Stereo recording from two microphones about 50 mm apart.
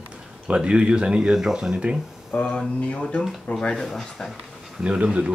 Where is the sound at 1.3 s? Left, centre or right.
Centre.